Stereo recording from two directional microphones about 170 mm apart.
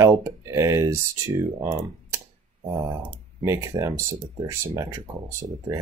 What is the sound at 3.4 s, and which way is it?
Speech, 20° right (ahead or behind).